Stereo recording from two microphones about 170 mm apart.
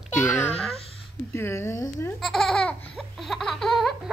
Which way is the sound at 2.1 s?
Centre (ahead or behind).